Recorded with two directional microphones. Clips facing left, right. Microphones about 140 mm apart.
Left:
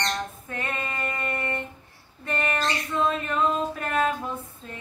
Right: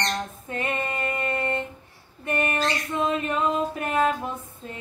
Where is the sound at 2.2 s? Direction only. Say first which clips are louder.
Right 2 dB; 20° right (ahead or behind).